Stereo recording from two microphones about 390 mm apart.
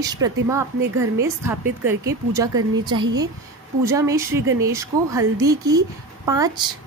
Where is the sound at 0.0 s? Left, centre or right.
Centre.